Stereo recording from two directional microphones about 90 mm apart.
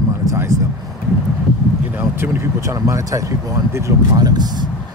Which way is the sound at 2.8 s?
35° right (ahead or behind).